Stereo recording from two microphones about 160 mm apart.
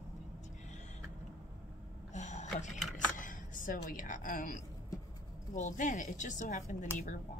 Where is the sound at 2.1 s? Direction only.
45° left (ahead or behind).